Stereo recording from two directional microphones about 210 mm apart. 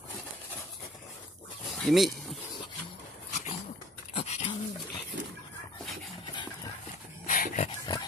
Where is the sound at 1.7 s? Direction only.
Centre (ahead or behind).